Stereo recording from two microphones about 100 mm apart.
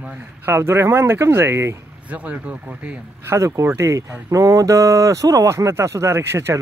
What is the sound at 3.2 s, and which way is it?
Speech, 30° right (ahead or behind).